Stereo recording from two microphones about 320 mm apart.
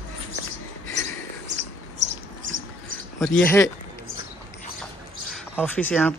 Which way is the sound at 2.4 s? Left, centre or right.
Right.